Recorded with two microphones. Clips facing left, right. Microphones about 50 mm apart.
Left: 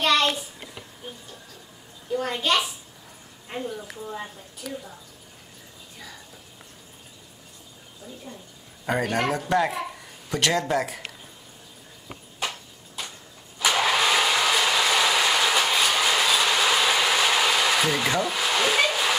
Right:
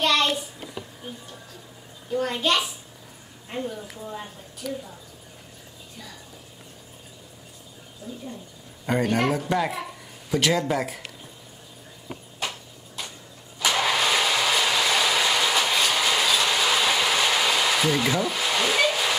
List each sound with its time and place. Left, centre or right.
0.0 s a sound: centre
2.1 s a woman's voice: centre
8.8 s speech: centre
12.1 s a sound: centre
13.6 s vehicle: centre
18.1 s hair dryer: centre